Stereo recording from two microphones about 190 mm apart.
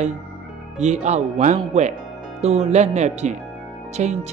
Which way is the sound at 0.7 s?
35° right (ahead or behind).